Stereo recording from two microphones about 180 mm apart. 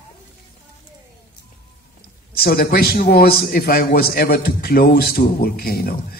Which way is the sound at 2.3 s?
60° left (ahead or behind).